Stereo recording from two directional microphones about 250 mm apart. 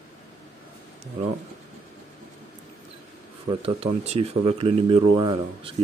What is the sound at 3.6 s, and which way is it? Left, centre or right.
Speech, right.